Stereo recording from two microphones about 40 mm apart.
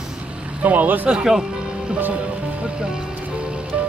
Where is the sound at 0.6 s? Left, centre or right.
Right.